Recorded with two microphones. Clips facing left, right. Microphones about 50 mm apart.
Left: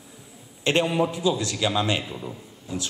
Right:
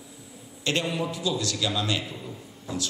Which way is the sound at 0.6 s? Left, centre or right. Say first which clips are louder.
Left 5 dB; left.